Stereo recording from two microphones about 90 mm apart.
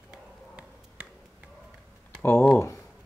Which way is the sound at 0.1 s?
10° right (ahead or behind).